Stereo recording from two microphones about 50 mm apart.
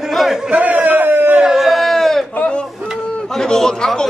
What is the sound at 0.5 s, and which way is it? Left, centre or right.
Speech, right.